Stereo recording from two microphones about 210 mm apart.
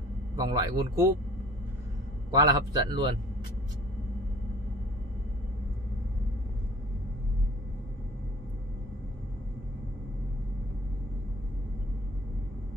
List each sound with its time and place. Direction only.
0.4 s speech: 20° right (ahead or behind)
2.3 s a man's voice: 20° right (ahead or behind)